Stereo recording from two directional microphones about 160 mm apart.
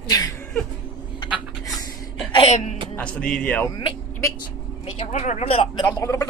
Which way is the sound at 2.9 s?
5° left (ahead or behind).